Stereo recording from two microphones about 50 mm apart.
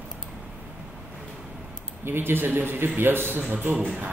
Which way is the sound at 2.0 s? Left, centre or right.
Right.